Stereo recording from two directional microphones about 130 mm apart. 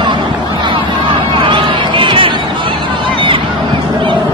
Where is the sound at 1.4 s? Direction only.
40° right (ahead or behind).